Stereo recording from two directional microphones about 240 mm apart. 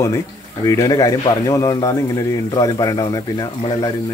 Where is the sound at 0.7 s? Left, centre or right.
Centre.